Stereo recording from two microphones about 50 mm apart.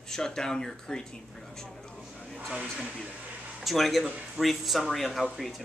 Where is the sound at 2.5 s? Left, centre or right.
Centre.